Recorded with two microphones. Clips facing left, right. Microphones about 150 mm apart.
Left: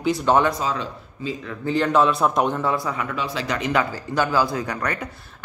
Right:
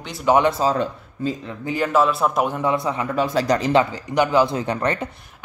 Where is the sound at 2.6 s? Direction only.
20° right (ahead or behind).